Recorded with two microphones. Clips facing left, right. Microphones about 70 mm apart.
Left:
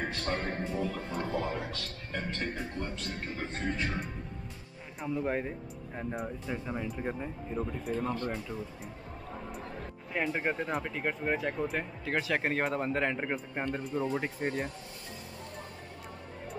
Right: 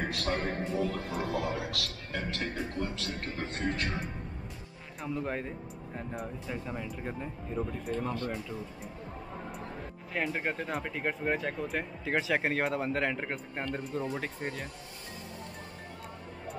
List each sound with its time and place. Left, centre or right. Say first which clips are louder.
0.0 s speech: right 1 dB; centre
5.0 s speech: left 2 dB; centre
10.1 s speech: left 1 dB; centre
13.9 s speech: left 4 dB; centre